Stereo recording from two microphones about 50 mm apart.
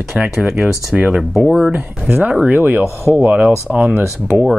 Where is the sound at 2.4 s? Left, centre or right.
Right.